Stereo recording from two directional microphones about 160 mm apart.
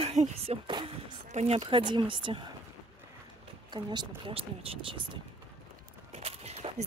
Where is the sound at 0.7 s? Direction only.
30° right (ahead or behind).